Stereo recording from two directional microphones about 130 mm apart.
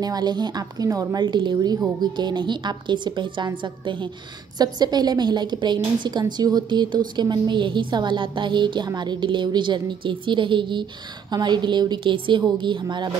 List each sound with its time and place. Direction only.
0.0 s a woman's voice: 30° right (ahead or behind)